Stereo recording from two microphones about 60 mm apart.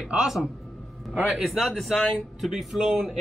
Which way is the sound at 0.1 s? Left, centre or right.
Centre.